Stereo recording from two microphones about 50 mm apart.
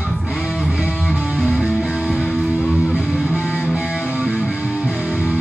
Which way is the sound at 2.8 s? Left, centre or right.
Centre.